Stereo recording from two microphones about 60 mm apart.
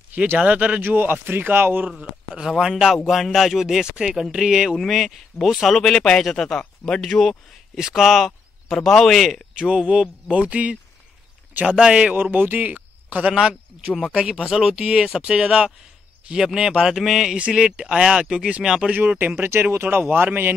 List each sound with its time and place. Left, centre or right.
0.1 s speech: right
1.9 s speech: centre
2.6 s speech: centre
5.8 s a man's voice: centre
9.6 s speech: centre
12.2 s a man's voice: right
13.3 s speech: centre
14.8 s speech: centre
18.9 s speech: right
19.5 s speech: right
20.0 s speech: right